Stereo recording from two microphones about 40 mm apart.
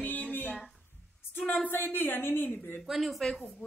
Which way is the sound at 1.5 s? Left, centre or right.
Left.